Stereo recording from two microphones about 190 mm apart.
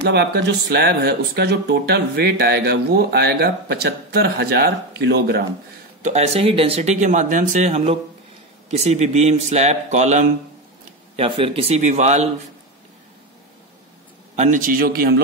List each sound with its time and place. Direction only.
0.0 s speech: 60° right (ahead or behind)
6.0 s speech: 35° right (ahead or behind)
14.3 s a man's voice: 40° right (ahead or behind)